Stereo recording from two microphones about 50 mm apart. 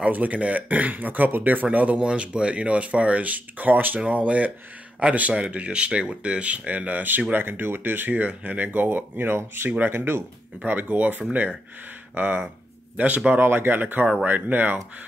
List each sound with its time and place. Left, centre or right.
0.0 s speech: right
2.0 s speech: right
10.6 s speech: right
13.4 s speech: right